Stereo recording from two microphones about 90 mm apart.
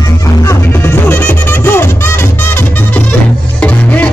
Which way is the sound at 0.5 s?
25° left (ahead or behind).